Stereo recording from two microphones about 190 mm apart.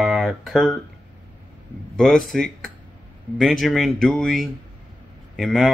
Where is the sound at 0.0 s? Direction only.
Centre (ahead or behind).